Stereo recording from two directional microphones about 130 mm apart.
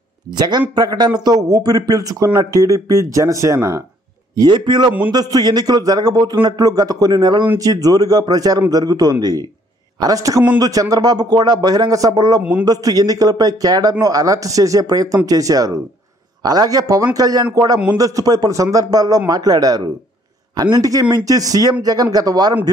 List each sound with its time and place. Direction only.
0.3 s a man's voice: 35° right (ahead or behind)
4.4 s a man's voice: 35° right (ahead or behind)